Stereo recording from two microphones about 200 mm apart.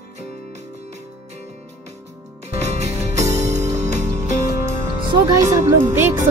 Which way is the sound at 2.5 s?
35° right (ahead or behind).